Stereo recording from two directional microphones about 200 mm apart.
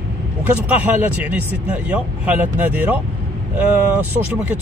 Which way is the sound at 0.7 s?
10° right (ahead or behind).